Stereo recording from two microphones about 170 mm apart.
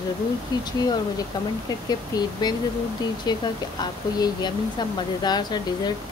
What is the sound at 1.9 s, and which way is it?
Speech, 25° left (ahead or behind).